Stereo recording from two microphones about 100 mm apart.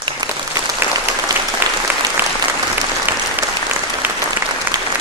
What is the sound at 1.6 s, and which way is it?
Applause, 20° right (ahead or behind).